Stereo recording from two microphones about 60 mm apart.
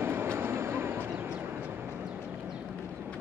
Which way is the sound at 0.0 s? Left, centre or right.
Right.